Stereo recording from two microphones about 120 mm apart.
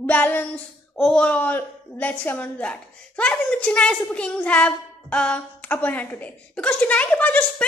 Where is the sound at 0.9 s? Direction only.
5° left (ahead or behind).